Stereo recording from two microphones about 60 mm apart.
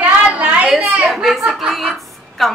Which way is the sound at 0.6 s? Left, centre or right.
Centre.